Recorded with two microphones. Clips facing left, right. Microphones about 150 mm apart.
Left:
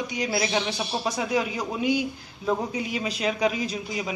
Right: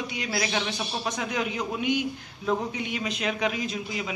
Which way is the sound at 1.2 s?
35° left (ahead or behind).